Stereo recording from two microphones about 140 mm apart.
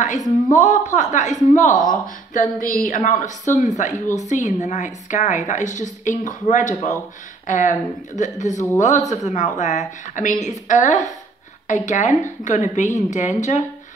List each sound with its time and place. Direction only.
0.5 s a woman's voice: 60° left (ahead or behind)